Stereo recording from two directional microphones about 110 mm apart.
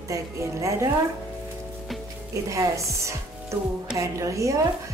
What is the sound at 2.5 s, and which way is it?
A woman's voice, 30° right (ahead or behind).